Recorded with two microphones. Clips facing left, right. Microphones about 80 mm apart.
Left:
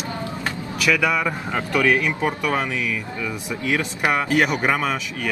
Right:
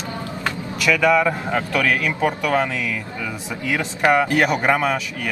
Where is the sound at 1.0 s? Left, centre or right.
Centre.